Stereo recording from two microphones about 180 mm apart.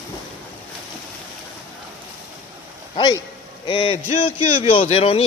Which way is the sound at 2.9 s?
25° left (ahead or behind).